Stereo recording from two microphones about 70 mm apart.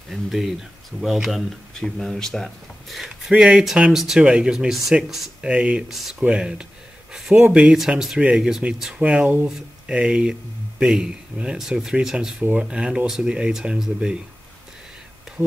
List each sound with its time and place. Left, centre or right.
0.1 s speech: centre
4.2 s speech: centre
5.5 s speech: centre
5.9 s speech: centre
9.0 s speech: centre